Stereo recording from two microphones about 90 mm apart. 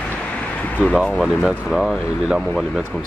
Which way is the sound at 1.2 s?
10° right (ahead or behind).